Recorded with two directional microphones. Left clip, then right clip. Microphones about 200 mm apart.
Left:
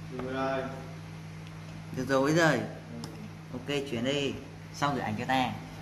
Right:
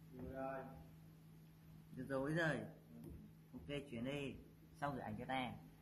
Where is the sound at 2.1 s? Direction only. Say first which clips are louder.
Left 16 dB; 15° right (ahead or behind).